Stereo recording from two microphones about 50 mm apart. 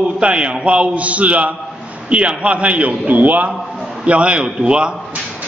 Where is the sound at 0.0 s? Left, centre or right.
Right.